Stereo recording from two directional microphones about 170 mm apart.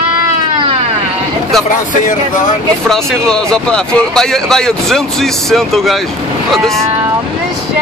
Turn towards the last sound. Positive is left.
turn(degrees=0)  # may be behind; listen again after turning